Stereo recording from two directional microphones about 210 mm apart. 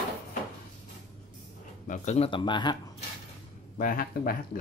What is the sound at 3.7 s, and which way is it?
Speech, 40° left (ahead or behind).